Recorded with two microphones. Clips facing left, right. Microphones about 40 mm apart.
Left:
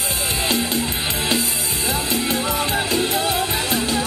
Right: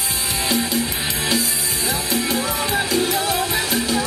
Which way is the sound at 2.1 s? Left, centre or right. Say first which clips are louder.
Right 1 dB; left.